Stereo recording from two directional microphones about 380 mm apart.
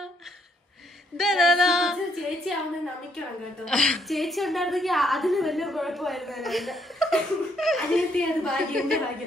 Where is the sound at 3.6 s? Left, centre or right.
Centre.